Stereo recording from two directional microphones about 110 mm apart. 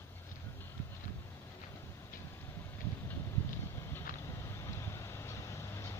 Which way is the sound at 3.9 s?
25° left (ahead or behind).